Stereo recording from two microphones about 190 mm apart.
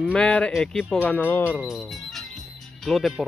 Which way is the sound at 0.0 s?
5° left (ahead or behind).